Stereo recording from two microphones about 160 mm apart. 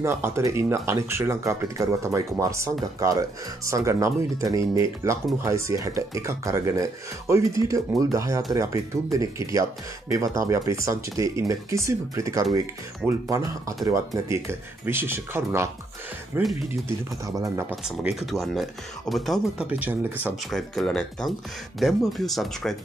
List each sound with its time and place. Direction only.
0.0 s speech: 15° right (ahead or behind)
17.8 s speech: centre (ahead or behind)
19.7 s speech: 10° right (ahead or behind)
20.4 s speech: centre (ahead or behind)